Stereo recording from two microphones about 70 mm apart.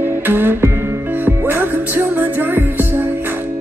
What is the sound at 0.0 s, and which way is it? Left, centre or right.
Music, right.